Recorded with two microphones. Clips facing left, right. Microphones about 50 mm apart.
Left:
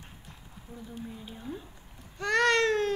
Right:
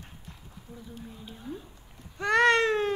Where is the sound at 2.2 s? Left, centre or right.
Right.